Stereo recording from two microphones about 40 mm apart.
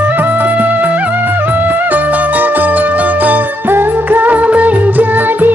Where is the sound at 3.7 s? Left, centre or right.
Right.